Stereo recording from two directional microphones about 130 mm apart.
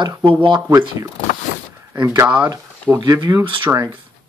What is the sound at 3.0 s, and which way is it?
Speech, 30° right (ahead or behind).